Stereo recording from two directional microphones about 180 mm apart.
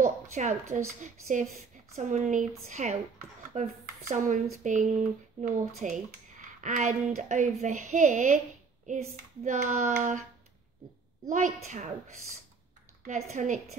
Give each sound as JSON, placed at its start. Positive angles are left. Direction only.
{"t": 0.0, "sound": "a woman's voice", "side_deg": -40}
{"t": 11.2, "sound": "speech", "side_deg": -40}
{"t": 13.0, "sound": "speech", "side_deg": -40}